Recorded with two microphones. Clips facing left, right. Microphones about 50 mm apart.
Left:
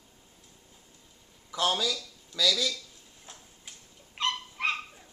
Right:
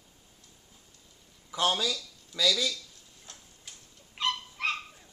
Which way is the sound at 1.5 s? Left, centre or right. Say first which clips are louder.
Even; centre.